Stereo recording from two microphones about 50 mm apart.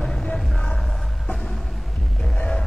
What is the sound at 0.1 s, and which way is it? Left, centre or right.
Music, centre.